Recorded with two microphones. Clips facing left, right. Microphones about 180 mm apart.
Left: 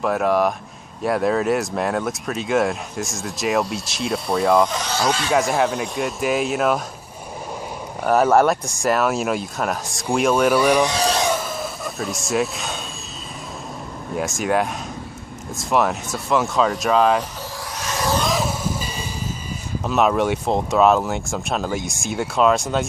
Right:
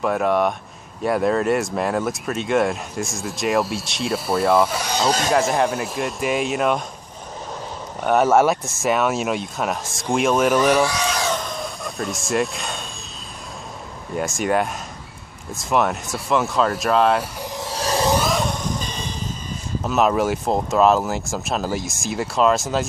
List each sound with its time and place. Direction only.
0.0 s speech: centre (ahead or behind)
5.3 s speech: centre (ahead or behind)
8.0 s speech: centre (ahead or behind)
10.6 s speech: 10° left (ahead or behind)
10.9 s a sound: 35° left (ahead or behind)
11.3 s vehicle: 5° left (ahead or behind)
14.1 s speech: centre (ahead or behind)
17.4 s a sound: 25° right (ahead or behind)
18.1 s vehicle: centre (ahead or behind)
19.8 s speech: centre (ahead or behind)